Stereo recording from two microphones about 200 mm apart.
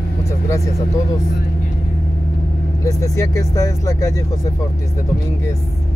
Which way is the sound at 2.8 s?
15° left (ahead or behind).